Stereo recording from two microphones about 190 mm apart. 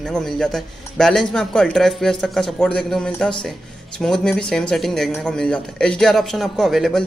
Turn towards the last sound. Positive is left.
turn(degrees=0)  # may be behind; listen again after turning